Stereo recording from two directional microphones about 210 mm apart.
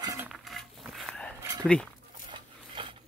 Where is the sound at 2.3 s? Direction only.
25° right (ahead or behind).